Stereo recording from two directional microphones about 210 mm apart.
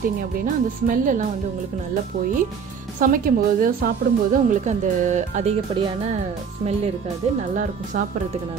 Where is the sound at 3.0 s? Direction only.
40° right (ahead or behind).